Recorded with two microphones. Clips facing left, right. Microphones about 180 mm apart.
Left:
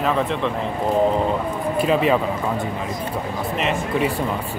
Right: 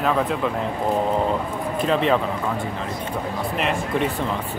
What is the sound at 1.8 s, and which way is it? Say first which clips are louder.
Speech: left 2 dB; 10° left (ahead or behind).